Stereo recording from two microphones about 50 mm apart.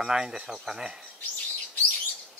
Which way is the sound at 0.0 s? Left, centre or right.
Centre.